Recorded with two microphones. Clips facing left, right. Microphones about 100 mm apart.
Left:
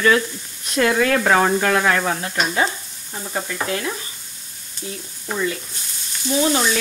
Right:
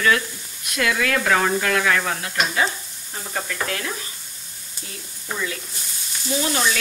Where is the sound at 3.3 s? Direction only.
15° left (ahead or behind).